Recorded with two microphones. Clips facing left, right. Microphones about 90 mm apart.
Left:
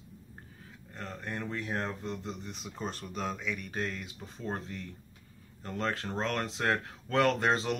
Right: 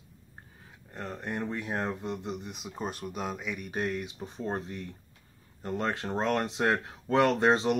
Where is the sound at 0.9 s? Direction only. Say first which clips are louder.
Right 4 dB; 20° right (ahead or behind).